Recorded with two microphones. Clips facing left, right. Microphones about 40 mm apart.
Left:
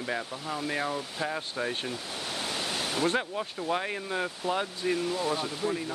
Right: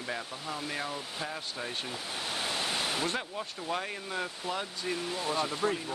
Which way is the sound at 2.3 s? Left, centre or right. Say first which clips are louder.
Even; centre.